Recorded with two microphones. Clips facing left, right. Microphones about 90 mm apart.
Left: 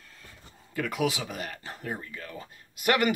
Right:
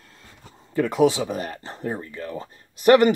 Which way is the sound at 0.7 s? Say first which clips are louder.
Right 10 dB; 30° right (ahead or behind).